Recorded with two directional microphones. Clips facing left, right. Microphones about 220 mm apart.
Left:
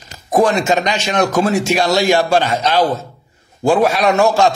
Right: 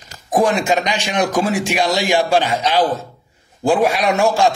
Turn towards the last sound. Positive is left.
turn(degrees=-10)  # may be behind; listen again after turning